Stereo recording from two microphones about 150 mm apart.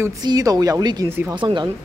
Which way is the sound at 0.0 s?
25° right (ahead or behind).